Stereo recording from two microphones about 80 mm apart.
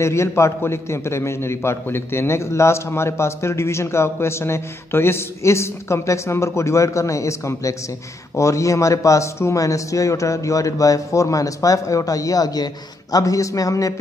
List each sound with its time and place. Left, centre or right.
0.0 s a man's voice: left